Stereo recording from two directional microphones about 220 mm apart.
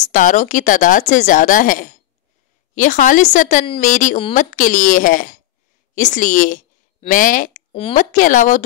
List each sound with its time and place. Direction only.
0.0 s a woman's voice: 35° left (ahead or behind)